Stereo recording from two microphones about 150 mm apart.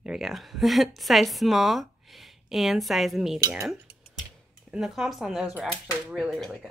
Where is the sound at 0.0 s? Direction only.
Centre (ahead or behind).